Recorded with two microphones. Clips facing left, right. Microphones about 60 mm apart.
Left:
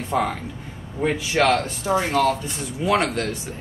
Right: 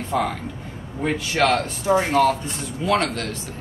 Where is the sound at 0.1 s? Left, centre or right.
Centre.